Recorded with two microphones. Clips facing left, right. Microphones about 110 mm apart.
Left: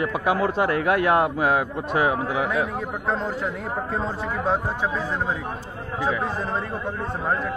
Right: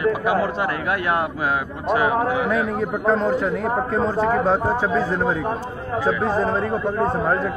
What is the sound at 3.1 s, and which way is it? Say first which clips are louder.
A man's voice: right 6 dB; 70° right (ahead or behind).